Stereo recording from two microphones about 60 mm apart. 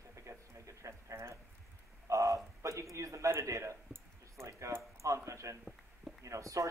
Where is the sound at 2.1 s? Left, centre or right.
Right.